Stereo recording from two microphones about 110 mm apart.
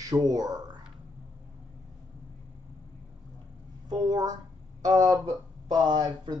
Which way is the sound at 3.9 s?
35° right (ahead or behind).